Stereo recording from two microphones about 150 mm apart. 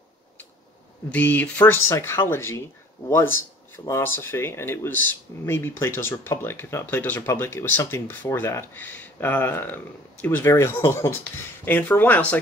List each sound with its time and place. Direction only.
1.1 s speech: 10° left (ahead or behind)
3.8 s speech: 15° left (ahead or behind)